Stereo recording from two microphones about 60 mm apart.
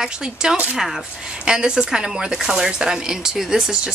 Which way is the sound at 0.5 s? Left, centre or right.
Right.